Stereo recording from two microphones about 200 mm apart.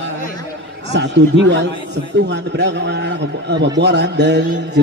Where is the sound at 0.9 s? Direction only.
60° right (ahead or behind).